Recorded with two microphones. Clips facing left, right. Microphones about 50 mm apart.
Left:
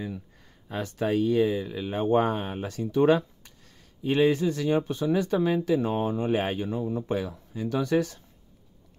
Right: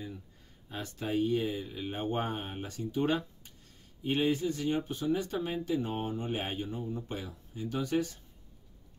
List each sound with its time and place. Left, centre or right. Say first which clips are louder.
0.7 s speech: left 8 dB; left